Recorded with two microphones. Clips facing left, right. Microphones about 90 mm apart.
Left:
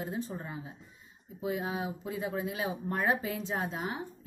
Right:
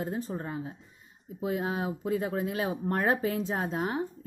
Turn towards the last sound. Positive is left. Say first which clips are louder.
# right 5 dB
turn(degrees=-45)  # may be behind; listen again after turning